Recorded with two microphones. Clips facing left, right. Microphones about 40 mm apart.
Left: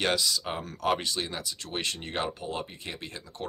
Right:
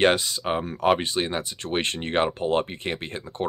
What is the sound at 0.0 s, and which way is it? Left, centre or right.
Speech, right.